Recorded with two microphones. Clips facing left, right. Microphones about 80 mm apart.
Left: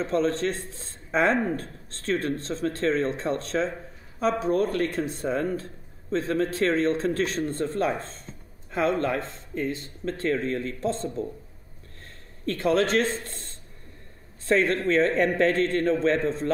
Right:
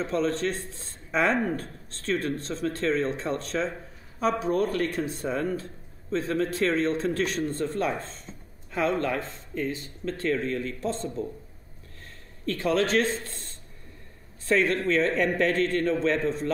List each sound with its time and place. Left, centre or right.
0.0 s speech: left
12.4 s speech: left
14.5 s speech: left